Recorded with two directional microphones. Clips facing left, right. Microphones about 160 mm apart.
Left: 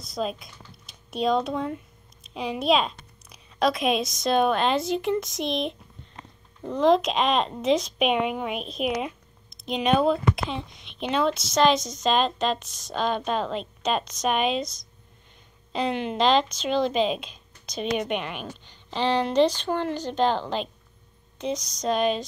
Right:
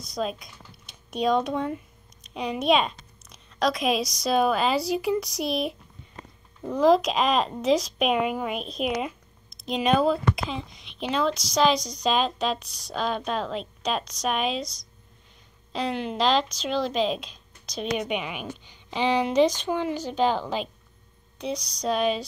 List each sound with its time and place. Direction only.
0.0 s a woman's voice: centre (ahead or behind)
14.6 s speech: 50° left (ahead or behind)
15.7 s a woman's voice: centre (ahead or behind)